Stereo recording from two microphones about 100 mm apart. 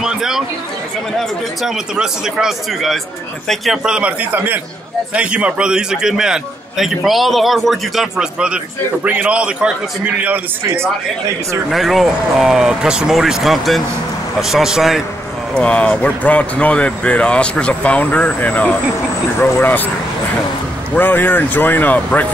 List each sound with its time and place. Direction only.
0.0 s speech: 5° right (ahead or behind)
1.6 s a man's voice: 5° right (ahead or behind)
11.7 s a man's voice: centre (ahead or behind)
15.5 s speech: 10° left (ahead or behind)
20.9 s speech: 20° left (ahead or behind)